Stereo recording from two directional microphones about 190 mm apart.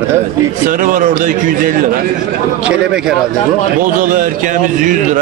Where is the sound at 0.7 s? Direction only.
45° right (ahead or behind).